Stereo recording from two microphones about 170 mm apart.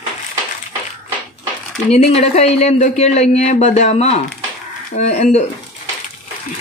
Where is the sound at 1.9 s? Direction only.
40° left (ahead or behind).